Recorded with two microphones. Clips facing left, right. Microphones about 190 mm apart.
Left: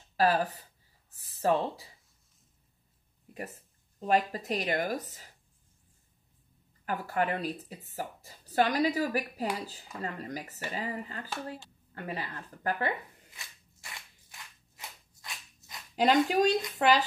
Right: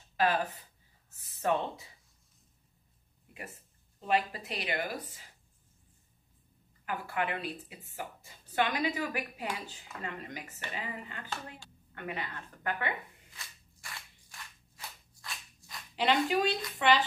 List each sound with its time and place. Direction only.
0.2 s speech: 35° left (ahead or behind)
4.0 s speech: 40° left (ahead or behind)
6.9 s speech: 40° left (ahead or behind)
13.8 s a sound: 20° left (ahead or behind)
16.0 s speech: 40° left (ahead or behind)